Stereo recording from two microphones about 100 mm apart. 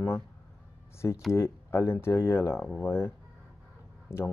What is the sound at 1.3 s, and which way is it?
Speech, 25° left (ahead or behind).